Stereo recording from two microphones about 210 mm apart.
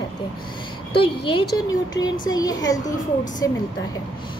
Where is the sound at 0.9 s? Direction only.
25° left (ahead or behind).